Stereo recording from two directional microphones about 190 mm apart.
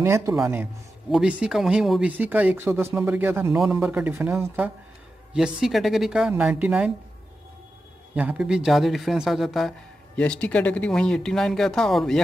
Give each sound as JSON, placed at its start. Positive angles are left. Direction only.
{"t": 0.0, "sound": "speech", "side_deg": -15}
{"t": 1.1, "sound": "a man's voice", "side_deg": -5}
{"t": 8.1, "sound": "a man's voice", "side_deg": -5}